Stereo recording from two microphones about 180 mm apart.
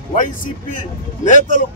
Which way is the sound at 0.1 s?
50° left (ahead or behind).